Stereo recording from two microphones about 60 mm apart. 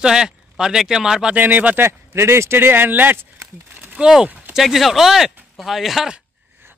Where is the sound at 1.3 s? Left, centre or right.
Right.